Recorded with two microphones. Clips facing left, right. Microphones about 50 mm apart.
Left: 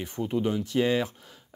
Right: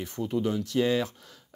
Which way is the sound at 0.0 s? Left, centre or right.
Left.